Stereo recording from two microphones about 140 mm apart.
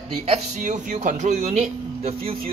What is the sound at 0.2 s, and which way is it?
Speech, 55° right (ahead or behind).